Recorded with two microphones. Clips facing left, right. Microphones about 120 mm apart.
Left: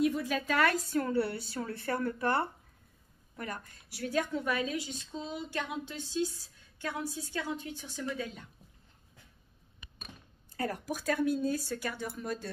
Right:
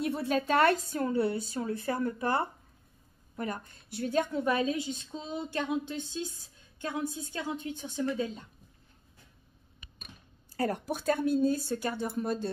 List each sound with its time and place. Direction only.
0.0 s a woman's voice: 30° right (ahead or behind)
10.5 s a woman's voice: 30° right (ahead or behind)